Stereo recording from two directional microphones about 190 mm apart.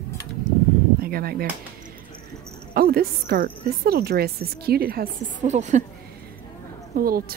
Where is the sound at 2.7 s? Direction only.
55° right (ahead or behind).